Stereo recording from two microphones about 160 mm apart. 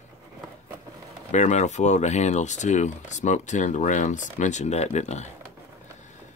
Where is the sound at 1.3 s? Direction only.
45° left (ahead or behind).